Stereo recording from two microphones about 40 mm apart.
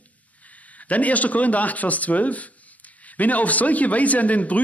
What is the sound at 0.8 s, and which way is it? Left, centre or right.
Speech, left.